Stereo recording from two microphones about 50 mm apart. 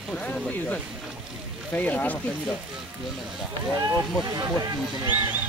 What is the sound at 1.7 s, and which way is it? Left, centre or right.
Speech, left.